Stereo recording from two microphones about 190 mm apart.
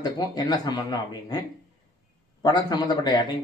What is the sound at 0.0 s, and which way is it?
Speech, 20° left (ahead or behind).